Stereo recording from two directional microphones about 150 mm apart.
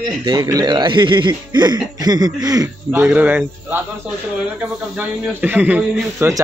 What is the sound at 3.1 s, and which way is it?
A man's voice, 10° right (ahead or behind).